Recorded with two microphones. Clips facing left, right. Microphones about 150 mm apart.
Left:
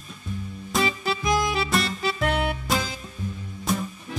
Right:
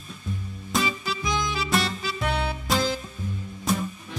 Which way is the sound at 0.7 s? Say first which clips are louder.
Left 2 dB; centre (ahead or behind).